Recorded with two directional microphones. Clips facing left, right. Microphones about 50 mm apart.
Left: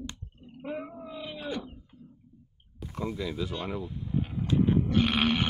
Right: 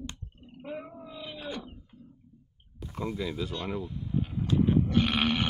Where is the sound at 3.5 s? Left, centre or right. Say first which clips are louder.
Even; centre.